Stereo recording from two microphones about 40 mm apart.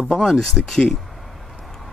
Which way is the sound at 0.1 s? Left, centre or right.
Centre.